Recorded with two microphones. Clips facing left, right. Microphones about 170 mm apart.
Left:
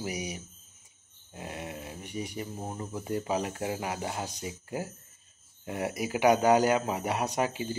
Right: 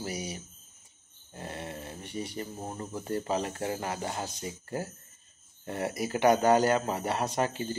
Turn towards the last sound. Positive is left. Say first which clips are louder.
# even
turn(degrees=10)  # may be behind; listen again after turning